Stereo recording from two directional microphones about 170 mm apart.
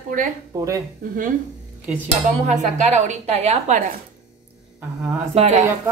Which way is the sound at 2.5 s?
45° right (ahead or behind).